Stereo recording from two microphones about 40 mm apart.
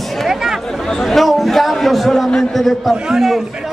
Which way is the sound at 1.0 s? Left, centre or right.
Centre.